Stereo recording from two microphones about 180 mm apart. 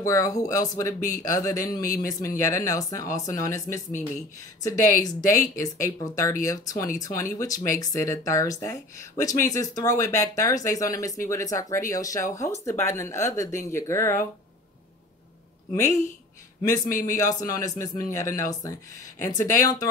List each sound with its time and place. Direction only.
0.0 s speech: 20° left (ahead or behind)
5.0 s speech: 15° left (ahead or behind)
15.7 s speech: 15° left (ahead or behind)